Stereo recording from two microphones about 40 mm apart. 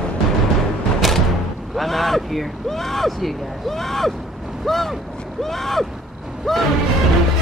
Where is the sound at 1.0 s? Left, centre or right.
Centre.